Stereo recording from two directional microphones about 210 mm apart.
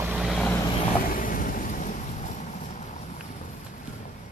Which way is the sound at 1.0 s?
40° left (ahead or behind).